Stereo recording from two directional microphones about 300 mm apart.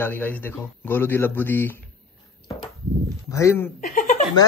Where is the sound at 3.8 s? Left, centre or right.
Left.